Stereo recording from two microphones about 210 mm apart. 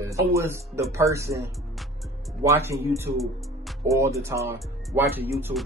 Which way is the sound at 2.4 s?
15° right (ahead or behind).